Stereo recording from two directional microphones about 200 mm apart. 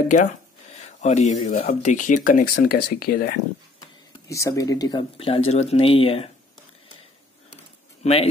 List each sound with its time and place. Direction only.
0.7 s speech: 35° left (ahead or behind)
2.5 s speech: 50° left (ahead or behind)
4.3 s speech: 15° left (ahead or behind)
8.0 s speech: 30° left (ahead or behind)